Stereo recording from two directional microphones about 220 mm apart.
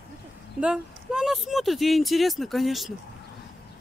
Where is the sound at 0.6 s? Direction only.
5° right (ahead or behind).